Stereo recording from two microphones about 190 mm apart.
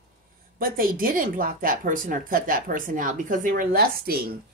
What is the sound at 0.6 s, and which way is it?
A woman's voice, 50° right (ahead or behind).